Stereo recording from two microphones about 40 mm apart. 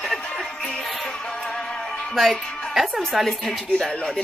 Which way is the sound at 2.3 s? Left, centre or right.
Left.